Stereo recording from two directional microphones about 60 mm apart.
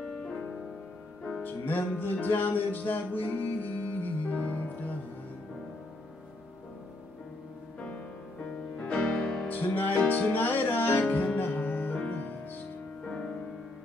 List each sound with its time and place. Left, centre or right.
0.0 s music: centre
1.4 s music: left
8.7 s music: centre
9.8 s music: left